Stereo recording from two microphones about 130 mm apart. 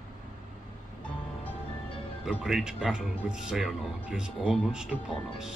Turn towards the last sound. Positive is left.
turn(degrees=-5)  # may be behind; listen again after turning